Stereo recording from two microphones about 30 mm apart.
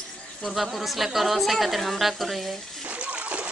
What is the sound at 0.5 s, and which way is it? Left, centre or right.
A woman's voice, centre.